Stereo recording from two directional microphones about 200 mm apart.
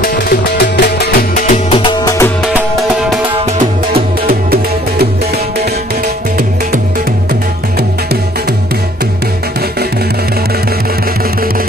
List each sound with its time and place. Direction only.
0.0 s music: 55° left (ahead or behind)
1.5 s music: 25° left (ahead or behind)
3.9 s music: 50° right (ahead or behind)